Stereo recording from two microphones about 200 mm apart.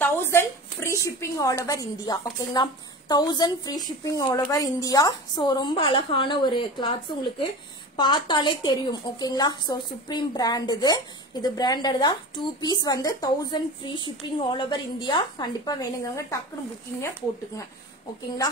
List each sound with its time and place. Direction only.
0.0 s a woman's voice: 10° left (ahead or behind)